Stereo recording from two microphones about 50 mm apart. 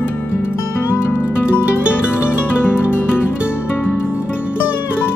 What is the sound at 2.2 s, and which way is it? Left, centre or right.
Music, left.